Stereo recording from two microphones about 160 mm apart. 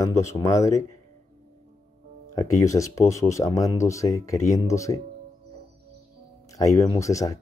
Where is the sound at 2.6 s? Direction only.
20° left (ahead or behind).